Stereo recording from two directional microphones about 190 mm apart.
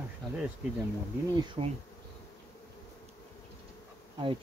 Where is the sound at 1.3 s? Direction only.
25° right (ahead or behind).